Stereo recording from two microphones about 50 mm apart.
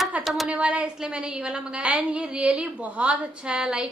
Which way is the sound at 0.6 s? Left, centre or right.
Centre.